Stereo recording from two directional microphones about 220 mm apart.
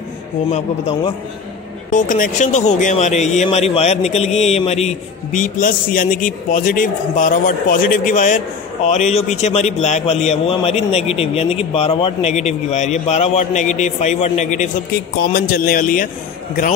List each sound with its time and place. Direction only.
0.5 s a man's voice: 25° left (ahead or behind)
1.9 s a man's voice: 35° left (ahead or behind)